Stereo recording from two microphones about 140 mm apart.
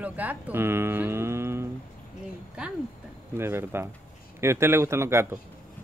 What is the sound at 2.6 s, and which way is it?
Speech, 5° right (ahead or behind).